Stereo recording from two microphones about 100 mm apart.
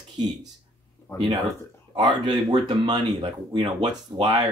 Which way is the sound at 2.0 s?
45° right (ahead or behind).